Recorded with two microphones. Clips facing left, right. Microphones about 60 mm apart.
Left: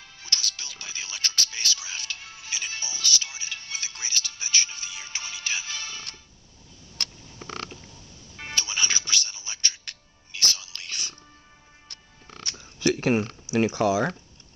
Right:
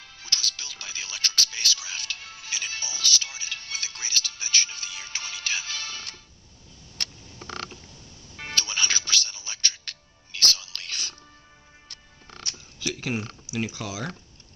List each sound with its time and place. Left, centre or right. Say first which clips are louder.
0.0 s music: even; left
3.3 s speech: right 1 dB; centre
8.5 s music: right 1 dB; centre
12.9 s speech: left 7 dB; left